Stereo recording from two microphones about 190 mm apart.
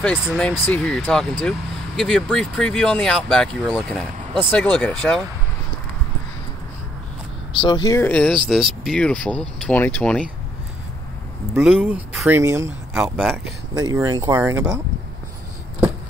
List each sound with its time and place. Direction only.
0.4 s speech: 5° left (ahead or behind)
7.5 s speech: 25° left (ahead or behind)
8.0 s speech: 5° left (ahead or behind)
11.5 s speech: 5° right (ahead or behind)
12.4 s speech: 15° right (ahead or behind)
13.7 s speech: 20° right (ahead or behind)